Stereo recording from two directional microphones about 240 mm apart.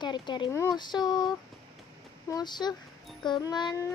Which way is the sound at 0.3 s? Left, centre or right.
Centre.